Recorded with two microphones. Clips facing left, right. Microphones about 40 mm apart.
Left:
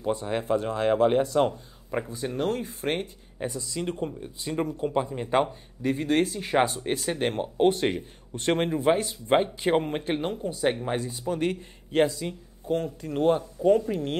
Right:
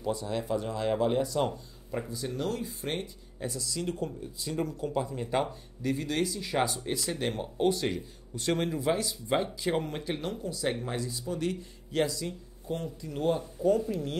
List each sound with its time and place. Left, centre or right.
0.0 s speech: left
12.7 s speech: left